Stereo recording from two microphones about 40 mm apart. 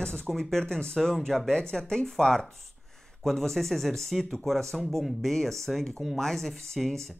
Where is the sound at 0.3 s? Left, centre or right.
Centre.